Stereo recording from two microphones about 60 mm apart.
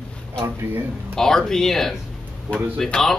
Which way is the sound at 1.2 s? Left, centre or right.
Centre.